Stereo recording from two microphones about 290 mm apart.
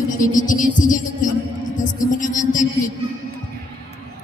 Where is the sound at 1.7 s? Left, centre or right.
Left.